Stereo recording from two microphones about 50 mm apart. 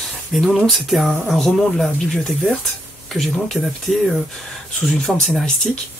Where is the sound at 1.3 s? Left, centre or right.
Centre.